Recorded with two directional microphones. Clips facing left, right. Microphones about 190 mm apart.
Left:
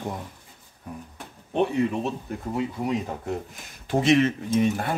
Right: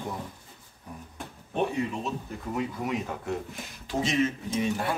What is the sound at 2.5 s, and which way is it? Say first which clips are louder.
Speech: left 3 dB; 30° left (ahead or behind).